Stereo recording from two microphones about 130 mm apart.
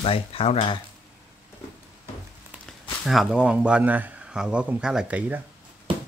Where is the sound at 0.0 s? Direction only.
45° left (ahead or behind).